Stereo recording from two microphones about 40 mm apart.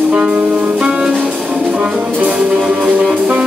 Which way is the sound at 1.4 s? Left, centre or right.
Right.